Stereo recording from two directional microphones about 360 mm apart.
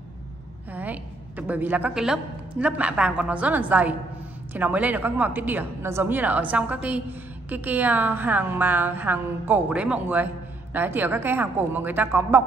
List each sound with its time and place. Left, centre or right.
0.7 s a woman's voice: centre